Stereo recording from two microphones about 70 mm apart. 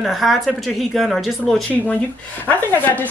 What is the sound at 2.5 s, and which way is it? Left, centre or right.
Speech, left.